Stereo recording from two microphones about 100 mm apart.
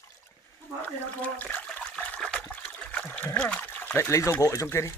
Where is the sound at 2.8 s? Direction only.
15° left (ahead or behind).